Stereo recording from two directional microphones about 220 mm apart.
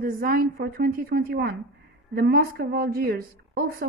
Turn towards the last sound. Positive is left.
turn(degrees=-45)  # may be behind; listen again after turning